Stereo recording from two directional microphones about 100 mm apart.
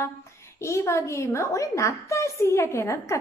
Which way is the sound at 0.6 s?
30° left (ahead or behind).